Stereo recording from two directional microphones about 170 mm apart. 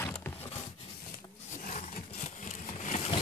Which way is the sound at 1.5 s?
50° left (ahead or behind).